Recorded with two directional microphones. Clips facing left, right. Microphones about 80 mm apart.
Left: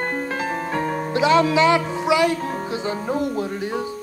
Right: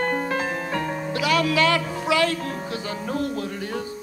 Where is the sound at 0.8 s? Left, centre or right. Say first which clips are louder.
Left 7 dB; left.